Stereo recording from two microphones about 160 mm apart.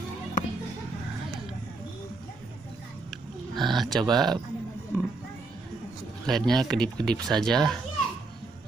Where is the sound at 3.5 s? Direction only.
30° right (ahead or behind).